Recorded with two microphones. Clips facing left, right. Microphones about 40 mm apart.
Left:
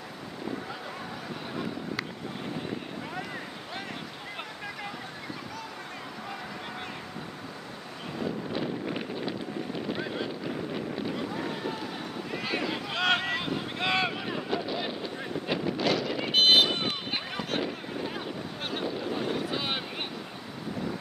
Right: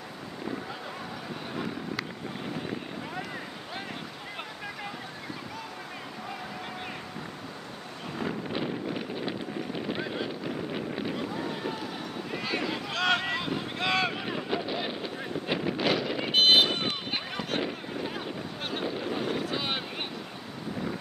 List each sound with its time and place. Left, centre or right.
1.5 s vehicle: centre
8.2 s wind noise: centre
9.1 s a sound: centre
11.1 s boat: centre
12.4 s a sound: centre
12.9 s boat: centre
14.1 s boat: centre
15.5 s a sound: centre
18.9 s boat: centre